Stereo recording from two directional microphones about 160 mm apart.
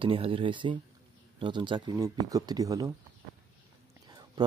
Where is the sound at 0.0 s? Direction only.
35° right (ahead or behind).